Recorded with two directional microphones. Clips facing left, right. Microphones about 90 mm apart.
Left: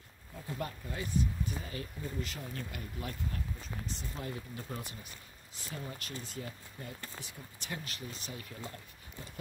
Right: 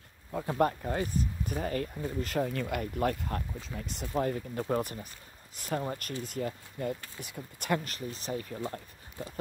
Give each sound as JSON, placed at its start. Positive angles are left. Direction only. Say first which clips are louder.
{"t": 0.3, "sound": "speech", "louder": "right 12 dB", "side_deg": -70}
{"t": 2.4, "sound": "speech", "louder": "right 10 dB", "side_deg": -85}